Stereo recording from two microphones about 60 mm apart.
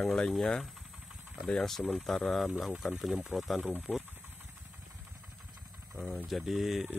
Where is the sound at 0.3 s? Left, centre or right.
Centre.